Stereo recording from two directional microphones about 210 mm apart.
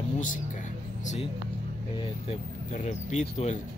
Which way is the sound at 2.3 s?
35° left (ahead or behind).